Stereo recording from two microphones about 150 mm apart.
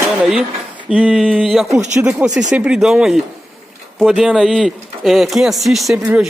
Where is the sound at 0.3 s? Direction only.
5° right (ahead or behind).